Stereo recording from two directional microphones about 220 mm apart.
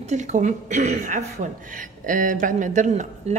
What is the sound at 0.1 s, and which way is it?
A woman's voice, 35° right (ahead or behind).